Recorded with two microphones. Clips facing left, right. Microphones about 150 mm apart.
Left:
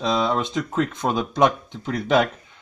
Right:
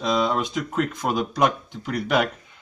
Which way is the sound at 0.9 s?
25° left (ahead or behind).